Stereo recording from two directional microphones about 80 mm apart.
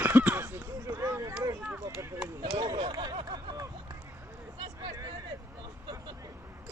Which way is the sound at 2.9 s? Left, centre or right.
Right.